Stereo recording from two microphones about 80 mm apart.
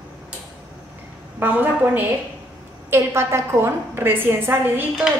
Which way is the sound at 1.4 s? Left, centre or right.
Right.